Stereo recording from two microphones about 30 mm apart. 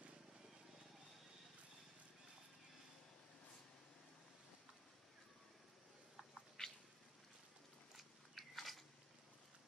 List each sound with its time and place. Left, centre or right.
6.6 s cat: left
8.4 s biting: centre